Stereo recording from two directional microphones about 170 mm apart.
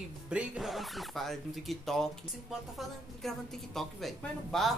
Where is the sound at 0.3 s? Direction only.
5° right (ahead or behind).